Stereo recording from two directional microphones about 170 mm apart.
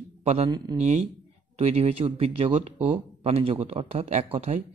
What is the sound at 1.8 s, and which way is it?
Speech, 35° right (ahead or behind).